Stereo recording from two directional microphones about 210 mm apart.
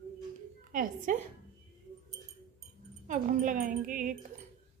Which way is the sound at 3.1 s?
40° right (ahead or behind).